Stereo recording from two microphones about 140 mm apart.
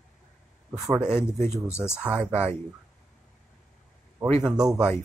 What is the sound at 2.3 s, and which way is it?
Speech, 50° right (ahead or behind).